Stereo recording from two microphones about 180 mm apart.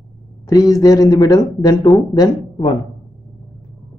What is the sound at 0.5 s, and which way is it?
A man's voice, 20° left (ahead or behind).